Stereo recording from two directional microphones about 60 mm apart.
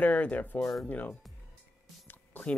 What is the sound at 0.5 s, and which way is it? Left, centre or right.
Speech, centre.